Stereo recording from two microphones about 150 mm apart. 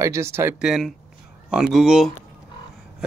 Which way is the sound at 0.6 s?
5° right (ahead or behind).